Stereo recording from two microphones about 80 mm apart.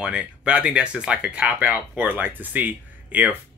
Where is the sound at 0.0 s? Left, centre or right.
Centre.